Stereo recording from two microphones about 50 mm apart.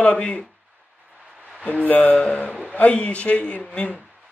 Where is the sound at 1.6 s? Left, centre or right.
Left.